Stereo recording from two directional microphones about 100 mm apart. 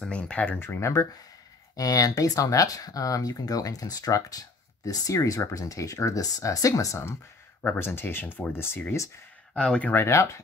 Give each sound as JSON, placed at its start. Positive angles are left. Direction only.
{"t": 0.0, "sound": "speech", "side_deg": 10}
{"t": 7.6, "sound": "speech", "side_deg": 20}
{"t": 9.5, "sound": "speech", "side_deg": 10}